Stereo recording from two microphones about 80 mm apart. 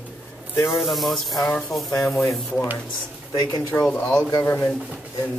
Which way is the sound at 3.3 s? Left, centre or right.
Left.